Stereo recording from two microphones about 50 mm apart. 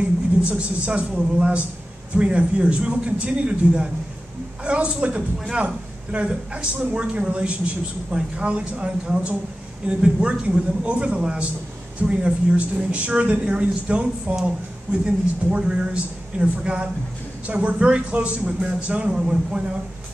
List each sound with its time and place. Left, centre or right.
0.4 s a woman's voice: right